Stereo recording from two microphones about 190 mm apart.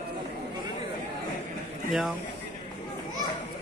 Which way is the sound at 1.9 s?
Centre (ahead or behind).